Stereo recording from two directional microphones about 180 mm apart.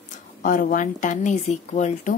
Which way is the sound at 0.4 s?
50° left (ahead or behind).